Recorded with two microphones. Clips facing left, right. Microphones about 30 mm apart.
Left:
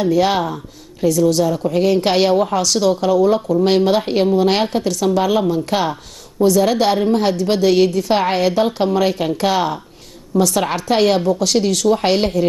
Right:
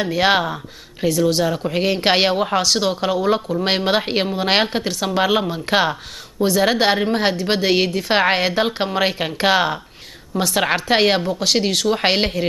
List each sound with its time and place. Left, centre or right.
0.0 s speech: right